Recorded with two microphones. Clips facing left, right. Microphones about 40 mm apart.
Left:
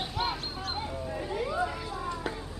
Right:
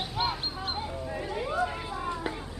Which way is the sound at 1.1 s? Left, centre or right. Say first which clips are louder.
Even; centre.